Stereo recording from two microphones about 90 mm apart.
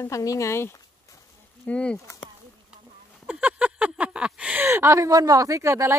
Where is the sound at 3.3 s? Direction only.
15° right (ahead or behind).